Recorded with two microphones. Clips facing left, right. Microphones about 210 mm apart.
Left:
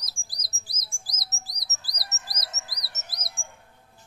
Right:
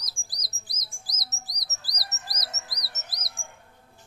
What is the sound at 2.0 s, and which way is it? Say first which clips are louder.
Chirp: right 1 dB; 25° left (ahead or behind).